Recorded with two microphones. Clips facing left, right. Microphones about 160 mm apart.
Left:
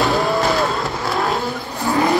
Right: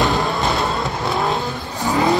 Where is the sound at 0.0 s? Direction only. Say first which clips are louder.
Left 2 dB; centre (ahead or behind).